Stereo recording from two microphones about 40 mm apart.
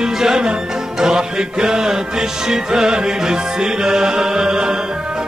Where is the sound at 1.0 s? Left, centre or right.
Centre.